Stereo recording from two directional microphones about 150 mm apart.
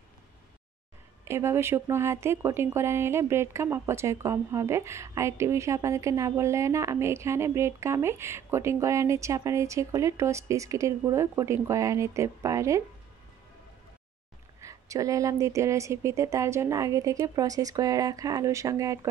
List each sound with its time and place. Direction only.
1.2 s speech: 15° right (ahead or behind)
14.6 s speech: 20° right (ahead or behind)